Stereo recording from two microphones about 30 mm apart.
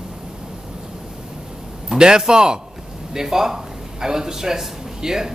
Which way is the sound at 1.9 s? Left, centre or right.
Right.